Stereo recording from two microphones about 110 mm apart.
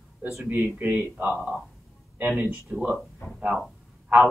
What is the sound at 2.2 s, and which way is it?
Speech, 15° right (ahead or behind).